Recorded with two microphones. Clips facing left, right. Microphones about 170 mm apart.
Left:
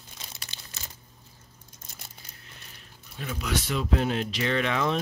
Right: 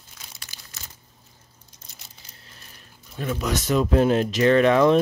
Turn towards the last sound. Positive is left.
turn(degrees=-50)  # may be behind; listen again after turning